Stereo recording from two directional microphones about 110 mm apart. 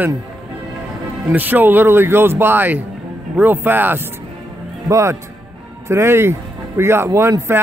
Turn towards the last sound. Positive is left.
turn(degrees=-25)  # may be behind; listen again after turning